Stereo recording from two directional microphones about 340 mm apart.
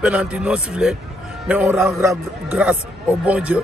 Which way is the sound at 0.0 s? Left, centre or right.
Centre.